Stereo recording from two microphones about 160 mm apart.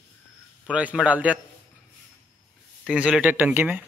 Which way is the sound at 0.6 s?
10° right (ahead or behind).